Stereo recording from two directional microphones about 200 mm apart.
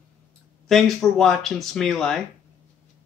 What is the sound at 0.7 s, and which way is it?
Speech, centre (ahead or behind).